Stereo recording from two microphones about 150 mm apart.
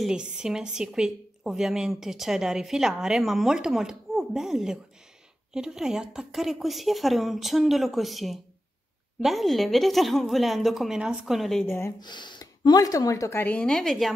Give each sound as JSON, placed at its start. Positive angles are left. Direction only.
{"t": 0.0, "sound": "a woman's voice", "side_deg": -5}
{"t": 11.6, "sound": "speech", "side_deg": 15}
{"t": 12.0, "sound": "speech", "side_deg": 30}